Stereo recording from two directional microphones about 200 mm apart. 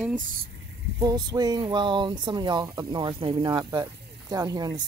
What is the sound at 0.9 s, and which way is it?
Speech, 20° right (ahead or behind).